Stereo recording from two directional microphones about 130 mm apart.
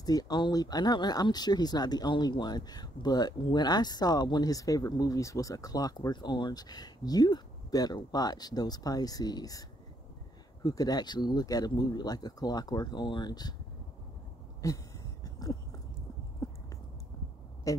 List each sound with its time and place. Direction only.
0.0 s speech: 30° left (ahead or behind)
14.6 s a sound: 25° left (ahead or behind)
17.7 s speech: 25° left (ahead or behind)